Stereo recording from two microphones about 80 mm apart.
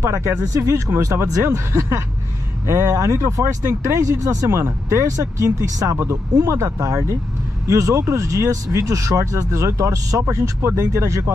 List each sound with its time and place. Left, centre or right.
0.0 s speech: right